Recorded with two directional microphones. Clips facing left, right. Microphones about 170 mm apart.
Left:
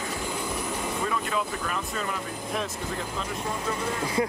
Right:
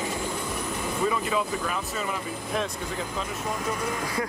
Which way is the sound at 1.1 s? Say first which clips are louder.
Right 2 dB; centre (ahead or behind).